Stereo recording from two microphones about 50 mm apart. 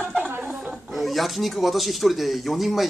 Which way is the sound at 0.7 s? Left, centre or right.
Centre.